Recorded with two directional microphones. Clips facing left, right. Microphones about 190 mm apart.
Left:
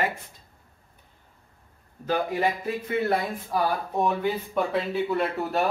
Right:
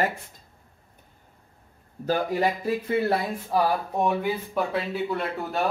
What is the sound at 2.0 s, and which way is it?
Speech, 40° right (ahead or behind).